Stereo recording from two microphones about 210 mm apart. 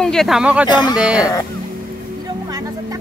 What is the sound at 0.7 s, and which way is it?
Speech, 20° left (ahead or behind).